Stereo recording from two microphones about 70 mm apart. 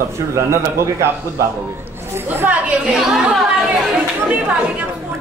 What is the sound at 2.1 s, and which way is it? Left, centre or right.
Speech, right.